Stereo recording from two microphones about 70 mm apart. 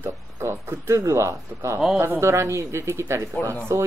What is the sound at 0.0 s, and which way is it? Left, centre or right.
Speech, right.